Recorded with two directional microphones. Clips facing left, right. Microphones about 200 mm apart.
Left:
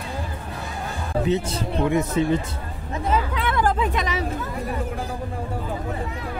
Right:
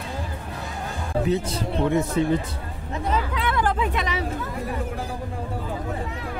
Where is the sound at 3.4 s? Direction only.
40° left (ahead or behind).